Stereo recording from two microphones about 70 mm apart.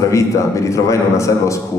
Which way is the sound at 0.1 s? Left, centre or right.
Left.